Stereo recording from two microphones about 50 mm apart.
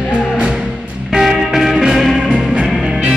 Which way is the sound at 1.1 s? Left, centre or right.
Centre.